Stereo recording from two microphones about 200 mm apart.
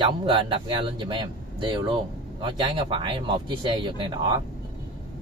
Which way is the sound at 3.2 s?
25° right (ahead or behind).